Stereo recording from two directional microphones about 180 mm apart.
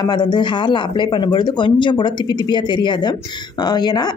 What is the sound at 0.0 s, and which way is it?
A woman's voice, 25° left (ahead or behind).